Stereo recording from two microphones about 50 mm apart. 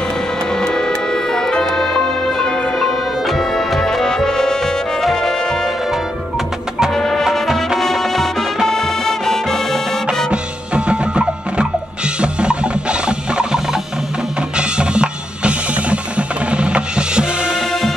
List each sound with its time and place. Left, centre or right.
0.6 s music: centre
6.9 s music: centre
10.3 s music: centre
14.6 s music: centre